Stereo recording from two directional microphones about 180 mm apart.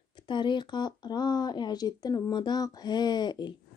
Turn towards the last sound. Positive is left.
turn(degrees=25)  # may be behind; listen again after turning